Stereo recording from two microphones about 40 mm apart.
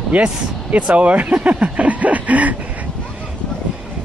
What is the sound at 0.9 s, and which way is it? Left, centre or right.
Speech, right.